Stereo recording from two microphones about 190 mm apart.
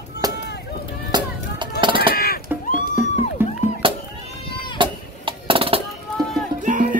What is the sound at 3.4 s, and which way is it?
Music, 10° right (ahead or behind).